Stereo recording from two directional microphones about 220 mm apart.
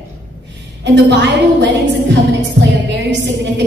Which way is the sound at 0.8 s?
55° right (ahead or behind).